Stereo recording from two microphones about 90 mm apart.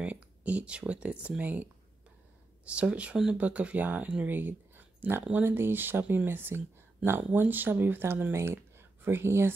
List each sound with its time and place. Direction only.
0.0 s speech: 15° right (ahead or behind)